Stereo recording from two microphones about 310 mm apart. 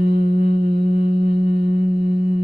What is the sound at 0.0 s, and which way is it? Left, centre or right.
Music, right.